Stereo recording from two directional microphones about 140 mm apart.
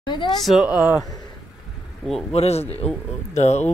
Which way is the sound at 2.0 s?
Centre (ahead or behind).